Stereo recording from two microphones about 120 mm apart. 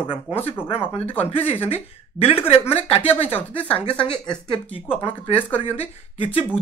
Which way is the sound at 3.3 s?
10° left (ahead or behind).